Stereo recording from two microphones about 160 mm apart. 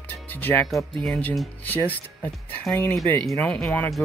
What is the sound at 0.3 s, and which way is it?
Speech, 10° left (ahead or behind).